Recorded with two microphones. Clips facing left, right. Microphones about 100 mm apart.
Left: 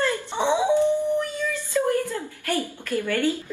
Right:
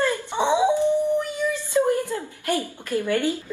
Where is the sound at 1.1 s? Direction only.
15° right (ahead or behind).